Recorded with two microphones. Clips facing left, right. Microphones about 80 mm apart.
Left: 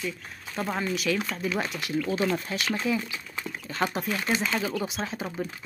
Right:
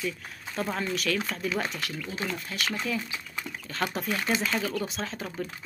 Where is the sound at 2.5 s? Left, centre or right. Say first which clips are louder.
Left 3 dB; left.